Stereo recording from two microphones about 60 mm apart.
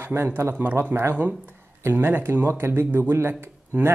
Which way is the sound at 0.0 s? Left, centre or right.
Right.